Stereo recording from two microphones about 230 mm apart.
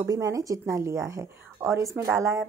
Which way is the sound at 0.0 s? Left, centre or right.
Centre.